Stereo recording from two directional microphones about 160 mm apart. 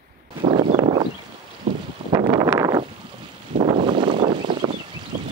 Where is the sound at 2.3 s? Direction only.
20° right (ahead or behind).